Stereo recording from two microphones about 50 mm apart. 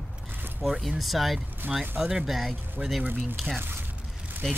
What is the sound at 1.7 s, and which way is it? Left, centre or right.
Speech, centre.